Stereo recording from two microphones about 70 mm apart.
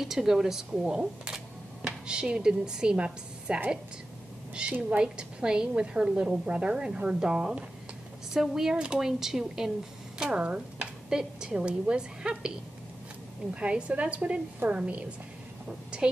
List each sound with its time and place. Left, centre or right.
0.0 s speech: centre
4.8 s a woman's voice: centre